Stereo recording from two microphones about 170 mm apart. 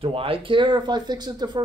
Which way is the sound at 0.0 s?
35° right (ahead or behind).